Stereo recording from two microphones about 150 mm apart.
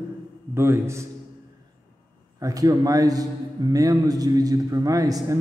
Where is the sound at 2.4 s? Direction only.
25° right (ahead or behind).